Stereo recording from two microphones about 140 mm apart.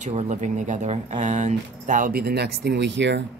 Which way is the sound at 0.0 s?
55° right (ahead or behind).